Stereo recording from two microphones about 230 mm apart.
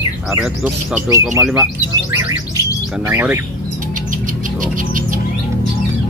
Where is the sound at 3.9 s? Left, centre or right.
Right.